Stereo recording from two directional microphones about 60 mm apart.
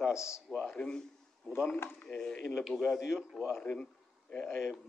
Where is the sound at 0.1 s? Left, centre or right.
Left.